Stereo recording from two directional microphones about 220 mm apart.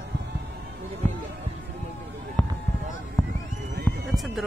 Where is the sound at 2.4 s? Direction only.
5° left (ahead or behind).